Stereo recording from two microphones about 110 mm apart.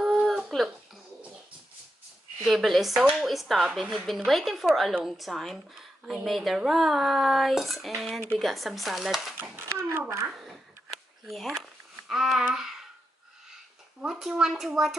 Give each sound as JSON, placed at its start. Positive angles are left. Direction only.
{"t": 0.0, "sound": "a sound", "side_deg": 0}
{"t": 2.4, "sound": "speech", "side_deg": 0}
{"t": 9.4, "sound": "a sound", "side_deg": -20}
{"t": 9.8, "sound": "a child's voice", "side_deg": -25}
{"t": 11.2, "sound": "speech", "side_deg": 0}
{"t": 14.0, "sound": "speech", "side_deg": -5}